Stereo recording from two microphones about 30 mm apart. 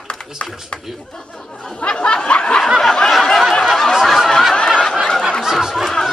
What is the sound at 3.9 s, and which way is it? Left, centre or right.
Snicker, centre.